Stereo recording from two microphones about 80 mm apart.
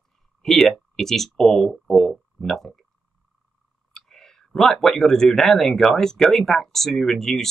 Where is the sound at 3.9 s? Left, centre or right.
Centre.